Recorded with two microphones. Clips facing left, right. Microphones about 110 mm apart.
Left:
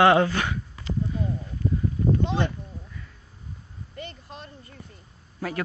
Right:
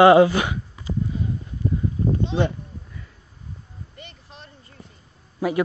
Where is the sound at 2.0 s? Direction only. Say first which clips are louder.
Even; 30° right (ahead or behind).